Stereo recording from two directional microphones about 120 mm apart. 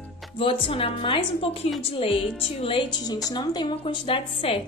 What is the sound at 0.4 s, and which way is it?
A woman's voice, 50° left (ahead or behind).